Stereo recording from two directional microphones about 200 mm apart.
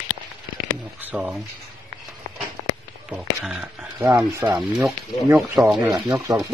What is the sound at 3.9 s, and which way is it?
Speech, 20° right (ahead or behind).